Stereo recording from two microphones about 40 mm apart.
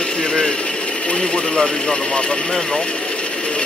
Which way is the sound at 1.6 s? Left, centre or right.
Centre.